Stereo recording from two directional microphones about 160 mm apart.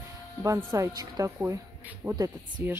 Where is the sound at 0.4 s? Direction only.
15° right (ahead or behind).